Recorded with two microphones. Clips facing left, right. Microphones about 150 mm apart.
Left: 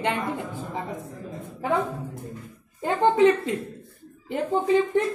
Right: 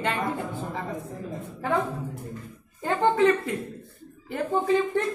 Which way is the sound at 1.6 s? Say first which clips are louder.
Left 1 dB; 15° left (ahead or behind).